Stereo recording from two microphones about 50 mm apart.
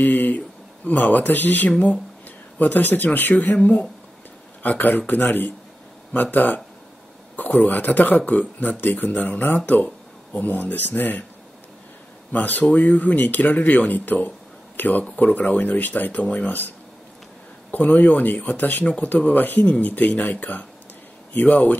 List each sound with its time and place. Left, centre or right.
0.0 s speech: left
4.6 s speech: left
12.3 s speech: left
17.6 s speech: left